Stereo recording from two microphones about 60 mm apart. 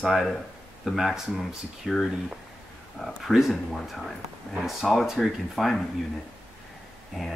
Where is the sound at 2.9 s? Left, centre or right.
Centre.